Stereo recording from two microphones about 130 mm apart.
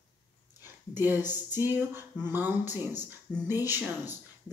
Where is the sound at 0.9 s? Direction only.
15° right (ahead or behind).